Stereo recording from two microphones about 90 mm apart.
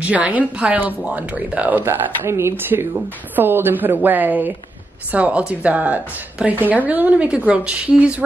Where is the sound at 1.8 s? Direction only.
30° right (ahead or behind).